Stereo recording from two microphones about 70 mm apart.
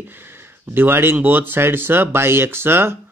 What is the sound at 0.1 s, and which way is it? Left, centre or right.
Speech, right.